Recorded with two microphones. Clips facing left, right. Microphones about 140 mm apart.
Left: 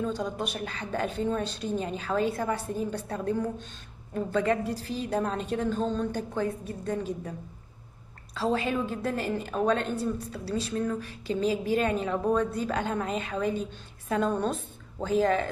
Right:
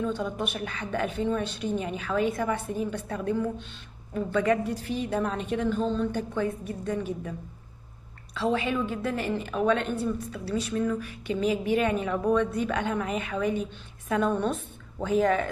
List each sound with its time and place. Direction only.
0.0 s a woman's voice: 35° left (ahead or behind)
8.4 s a woman's voice: 40° left (ahead or behind)